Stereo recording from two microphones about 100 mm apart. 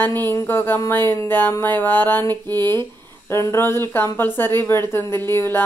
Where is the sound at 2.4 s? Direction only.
40° right (ahead or behind).